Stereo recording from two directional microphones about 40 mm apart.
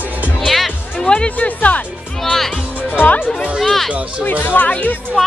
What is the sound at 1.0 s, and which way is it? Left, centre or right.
Speech, left.